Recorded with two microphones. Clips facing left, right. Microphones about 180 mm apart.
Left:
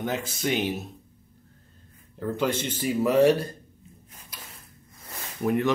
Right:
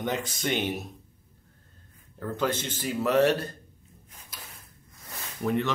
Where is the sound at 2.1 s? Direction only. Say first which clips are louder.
Left 2 dB; 10° left (ahead or behind).